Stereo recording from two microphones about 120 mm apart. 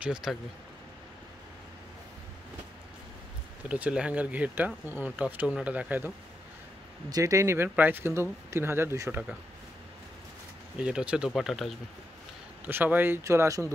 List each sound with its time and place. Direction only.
0.0 s speech: 5° right (ahead or behind)
3.6 s speech: 10° right (ahead or behind)
7.1 s speech: 30° right (ahead or behind)
10.8 s speech: 10° right (ahead or behind)
12.6 s speech: 15° right (ahead or behind)